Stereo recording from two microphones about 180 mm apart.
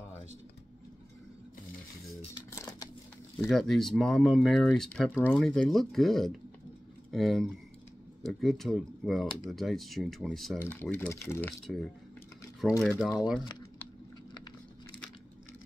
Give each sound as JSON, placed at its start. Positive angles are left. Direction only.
{"t": 2.5, "sound": "a sound", "side_deg": 15}
{"t": 3.3, "sound": "speech", "side_deg": 0}
{"t": 10.6, "sound": "speech", "side_deg": 10}
{"t": 11.6, "sound": "speech", "side_deg": 5}